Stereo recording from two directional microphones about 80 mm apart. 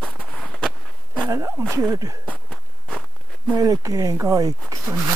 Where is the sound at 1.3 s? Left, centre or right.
Right.